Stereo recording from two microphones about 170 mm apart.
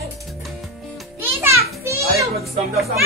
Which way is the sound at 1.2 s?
15° right (ahead or behind).